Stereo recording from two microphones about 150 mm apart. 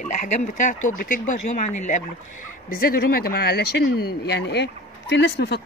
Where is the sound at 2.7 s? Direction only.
75° left (ahead or behind).